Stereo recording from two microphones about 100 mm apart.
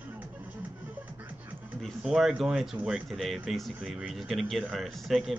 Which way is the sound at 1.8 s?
Centre (ahead or behind).